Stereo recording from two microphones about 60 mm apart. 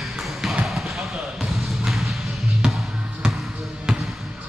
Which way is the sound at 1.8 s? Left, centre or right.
Centre.